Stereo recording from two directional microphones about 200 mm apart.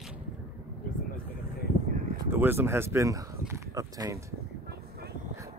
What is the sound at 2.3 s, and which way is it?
Speech, 10° right (ahead or behind).